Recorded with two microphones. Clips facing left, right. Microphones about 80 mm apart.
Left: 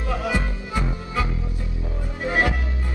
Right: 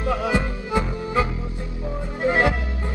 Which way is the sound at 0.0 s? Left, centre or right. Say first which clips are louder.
Right 3 dB; right.